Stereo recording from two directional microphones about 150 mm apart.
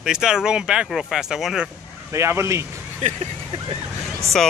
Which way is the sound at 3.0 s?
45° right (ahead or behind).